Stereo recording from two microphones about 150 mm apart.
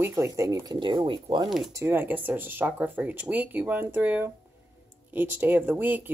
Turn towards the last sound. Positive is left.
turn(degrees=-10)  # may be behind; listen again after turning